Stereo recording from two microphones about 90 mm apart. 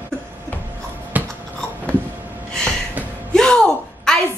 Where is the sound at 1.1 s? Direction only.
20° right (ahead or behind).